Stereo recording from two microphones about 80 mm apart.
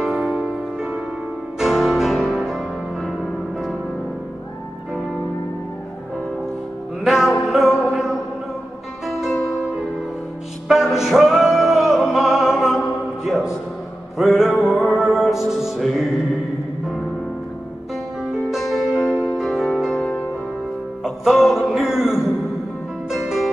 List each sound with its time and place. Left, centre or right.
0.0 s music: centre
1.6 s music: centre
7.1 s music: centre
10.7 s music: centre
18.5 s music: centre
20.0 s music: centre
21.0 s music: centre